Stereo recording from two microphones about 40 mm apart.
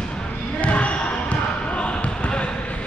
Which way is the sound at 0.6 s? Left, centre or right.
Left.